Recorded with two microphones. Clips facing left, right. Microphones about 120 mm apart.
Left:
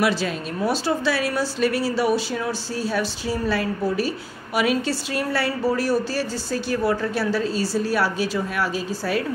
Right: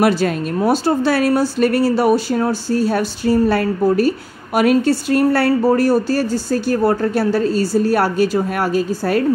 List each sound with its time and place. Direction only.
0.0 s a woman's voice: 50° right (ahead or behind)